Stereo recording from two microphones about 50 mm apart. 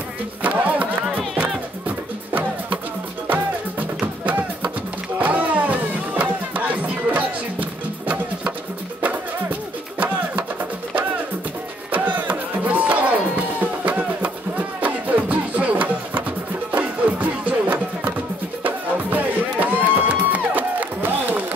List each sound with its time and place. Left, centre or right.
0.4 s music: right
4.0 s music: right
9.9 s music: right
11.9 s music: right